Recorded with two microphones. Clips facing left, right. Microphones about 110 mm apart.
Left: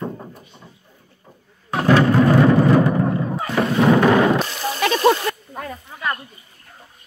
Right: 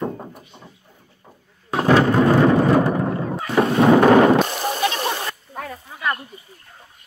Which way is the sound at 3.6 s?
25° right (ahead or behind).